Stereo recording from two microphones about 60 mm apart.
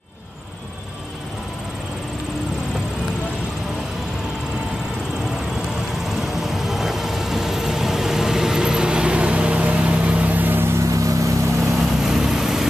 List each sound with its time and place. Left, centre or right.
6.0 s vehicle: centre; by 10.8 s right
10.8 s vehicle: right
11.8 s vehicle: centre